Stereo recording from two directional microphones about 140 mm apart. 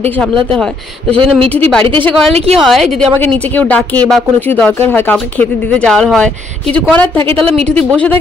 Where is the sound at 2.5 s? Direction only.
Centre (ahead or behind).